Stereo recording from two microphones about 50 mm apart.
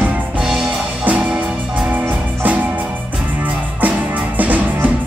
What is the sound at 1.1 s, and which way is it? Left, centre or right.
Music, right.